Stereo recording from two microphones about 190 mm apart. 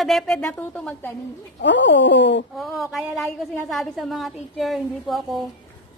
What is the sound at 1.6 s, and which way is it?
Speech, 70° left (ahead or behind).